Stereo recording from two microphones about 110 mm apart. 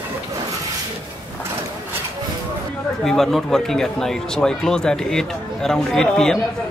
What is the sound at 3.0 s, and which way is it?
Speech, 5° left (ahead or behind).